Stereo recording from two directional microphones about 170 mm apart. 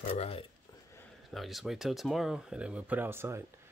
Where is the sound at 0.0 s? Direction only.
35° left (ahead or behind).